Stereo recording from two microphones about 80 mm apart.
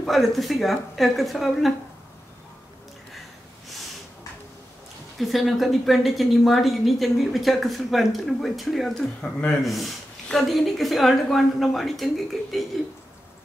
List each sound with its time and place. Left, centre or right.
0.0 s speech: centre
5.2 s speech: centre